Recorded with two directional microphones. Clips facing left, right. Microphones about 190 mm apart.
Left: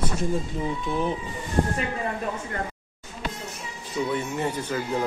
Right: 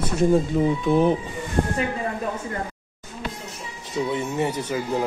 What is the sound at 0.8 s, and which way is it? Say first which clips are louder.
Speech: right 8 dB; 60° right (ahead or behind).